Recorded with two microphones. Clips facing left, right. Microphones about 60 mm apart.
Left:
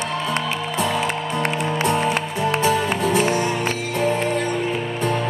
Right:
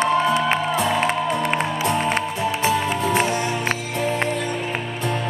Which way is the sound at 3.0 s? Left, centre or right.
Right.